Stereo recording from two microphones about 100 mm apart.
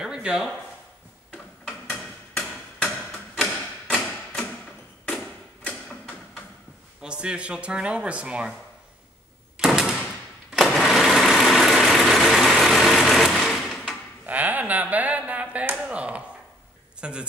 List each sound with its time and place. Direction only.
0.0 s a sound: 5° right (ahead or behind)
1.3 s tick-tock: 5° left (ahead or behind)
3.9 s thump: centre (ahead or behind)
5.1 s a sound: 5° left (ahead or behind)
7.0 s speech: 10° right (ahead or behind)
9.6 s door: 5° right (ahead or behind)
10.5 s sewing machine: centre (ahead or behind)
14.2 s a sound: 15° right (ahead or behind)
17.0 s speech: 10° right (ahead or behind)